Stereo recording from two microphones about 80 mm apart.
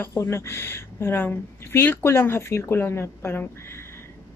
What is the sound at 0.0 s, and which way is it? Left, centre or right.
A woman's voice, left.